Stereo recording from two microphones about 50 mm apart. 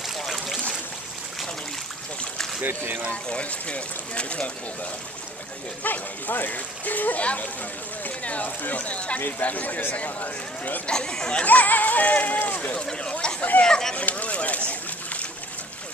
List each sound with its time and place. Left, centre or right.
0.0 s boat: centre
3.1 s speech: left
5.9 s speech: left
10.9 s speech: centre
11.4 s speech: left
13.0 s speech: centre
13.9 s a sound: left